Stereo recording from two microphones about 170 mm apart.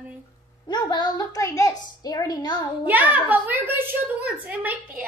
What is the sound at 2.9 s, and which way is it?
A woman's voice, 10° right (ahead or behind).